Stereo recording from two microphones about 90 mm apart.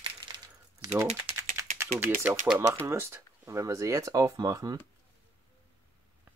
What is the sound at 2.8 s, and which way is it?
Speech, 30° right (ahead or behind).